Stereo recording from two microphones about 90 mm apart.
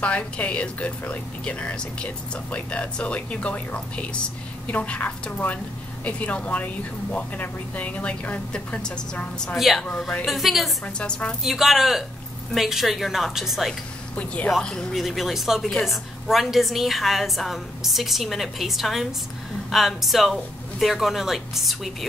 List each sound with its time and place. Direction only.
0.0 s speech: 15° left (ahead or behind)
9.6 s a woman's voice: centre (ahead or behind)
9.8 s speech: 10° left (ahead or behind)
10.2 s a woman's voice: centre (ahead or behind)
11.0 s speech: 15° left (ahead or behind)
11.4 s a woman's voice: 5° right (ahead or behind)
14.1 s a woman's voice: 15° left (ahead or behind); by 21.9 s centre (ahead or behind)